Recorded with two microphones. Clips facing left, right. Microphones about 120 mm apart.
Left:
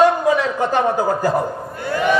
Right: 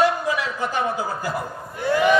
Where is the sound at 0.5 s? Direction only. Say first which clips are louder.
Left 7 dB; 55° left (ahead or behind).